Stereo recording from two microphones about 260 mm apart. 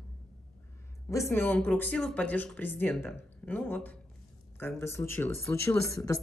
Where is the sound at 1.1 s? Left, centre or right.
Centre.